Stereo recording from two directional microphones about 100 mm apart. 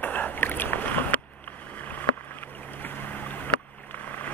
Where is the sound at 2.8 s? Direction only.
20° left (ahead or behind).